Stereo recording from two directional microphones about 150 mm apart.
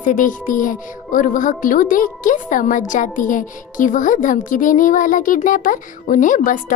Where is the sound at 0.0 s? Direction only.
60° left (ahead or behind).